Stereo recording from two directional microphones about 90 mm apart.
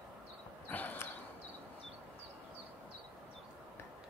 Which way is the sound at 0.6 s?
20° left (ahead or behind).